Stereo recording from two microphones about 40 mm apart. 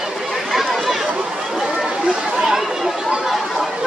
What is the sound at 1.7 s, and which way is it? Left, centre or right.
Chatter, centre.